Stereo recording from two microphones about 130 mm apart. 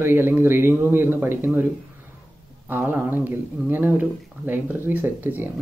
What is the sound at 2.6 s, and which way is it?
Speech, 15° right (ahead or behind).